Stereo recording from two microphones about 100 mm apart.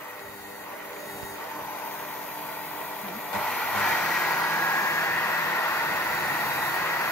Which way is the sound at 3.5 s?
10° left (ahead or behind).